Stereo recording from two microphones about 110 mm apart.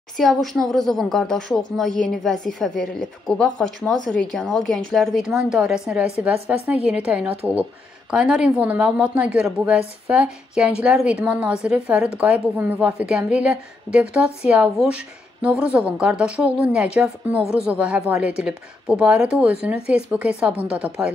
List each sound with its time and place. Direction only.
0.2 s a woman's voice: 5° left (ahead or behind)